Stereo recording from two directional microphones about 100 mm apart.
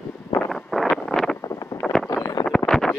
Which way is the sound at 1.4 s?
30° left (ahead or behind).